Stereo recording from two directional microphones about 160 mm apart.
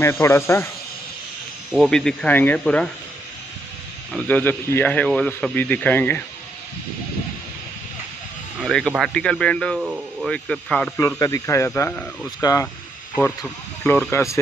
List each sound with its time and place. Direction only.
0.0 s a man's voice: 15° left (ahead or behind)
1.7 s speech: centre (ahead or behind)
4.3 s a man's voice: 10° left (ahead or behind)
8.5 s speech: centre (ahead or behind)
9.8 s speech: 10° right (ahead or behind)
10.2 s speech: 5° left (ahead or behind)
11.0 s a man's voice: 20° left (ahead or behind)
12.4 s speech: 20° left (ahead or behind)
14.1 s speech: 20° left (ahead or behind)